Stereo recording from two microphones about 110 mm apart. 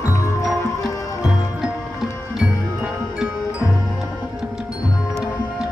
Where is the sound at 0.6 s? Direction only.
30° left (ahead or behind).